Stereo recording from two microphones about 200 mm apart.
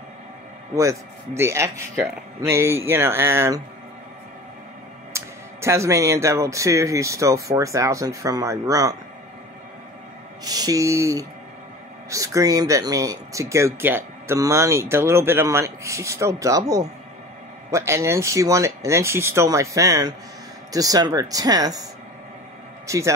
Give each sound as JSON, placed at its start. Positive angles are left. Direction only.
{"t": 0.7, "sound": "speech", "side_deg": -15}
{"t": 5.1, "sound": "speech", "side_deg": -15}
{"t": 10.4, "sound": "speech", "side_deg": -20}
{"t": 22.8, "sound": "speech", "side_deg": -15}